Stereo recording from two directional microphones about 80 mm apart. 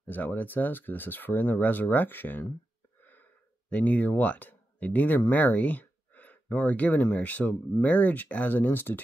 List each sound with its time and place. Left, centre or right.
0.0 s speech: left
3.0 s wheeze: left
3.7 s speech: centre